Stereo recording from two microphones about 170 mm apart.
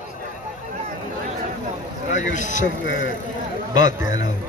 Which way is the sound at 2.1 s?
45° left (ahead or behind).